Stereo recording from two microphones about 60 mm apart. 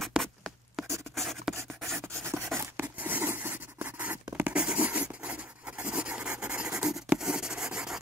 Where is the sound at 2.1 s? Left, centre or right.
Right.